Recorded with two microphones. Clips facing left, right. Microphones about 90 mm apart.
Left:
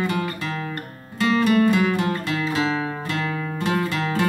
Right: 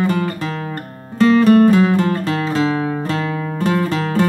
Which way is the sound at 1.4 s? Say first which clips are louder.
Right 6 dB; 40° right (ahead or behind).